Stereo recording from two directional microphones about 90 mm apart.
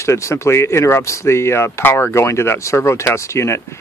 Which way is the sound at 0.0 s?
30° left (ahead or behind).